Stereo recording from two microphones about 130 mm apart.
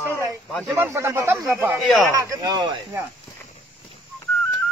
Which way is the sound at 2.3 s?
30° right (ahead or behind).